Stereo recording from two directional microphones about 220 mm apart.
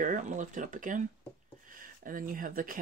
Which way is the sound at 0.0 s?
35° right (ahead or behind).